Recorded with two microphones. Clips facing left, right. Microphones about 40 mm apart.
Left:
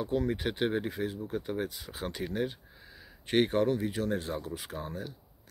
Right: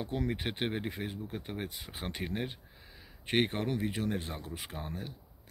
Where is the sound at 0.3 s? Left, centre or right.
Centre.